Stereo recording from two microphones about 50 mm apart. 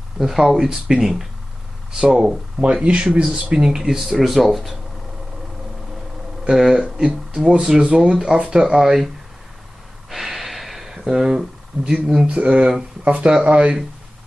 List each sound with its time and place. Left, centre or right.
0.2 s speech: centre
2.8 s speech: right
3.1 s speech: centre
6.4 s speech: centre
8.6 s speech: centre
10.0 s a sound: centre
12.3 s speech: right